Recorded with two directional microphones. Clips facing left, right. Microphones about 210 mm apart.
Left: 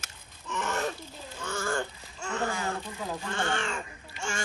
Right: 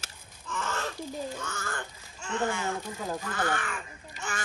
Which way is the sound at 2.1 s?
40° left (ahead or behind).